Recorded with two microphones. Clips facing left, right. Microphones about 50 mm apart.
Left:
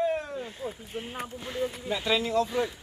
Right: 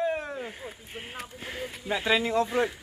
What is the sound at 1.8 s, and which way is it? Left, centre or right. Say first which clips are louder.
Speech: right 4 dB; right.